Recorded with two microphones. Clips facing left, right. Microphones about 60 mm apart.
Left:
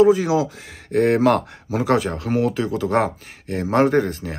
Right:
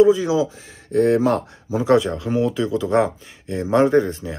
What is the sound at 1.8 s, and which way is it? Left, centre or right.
Speech, left.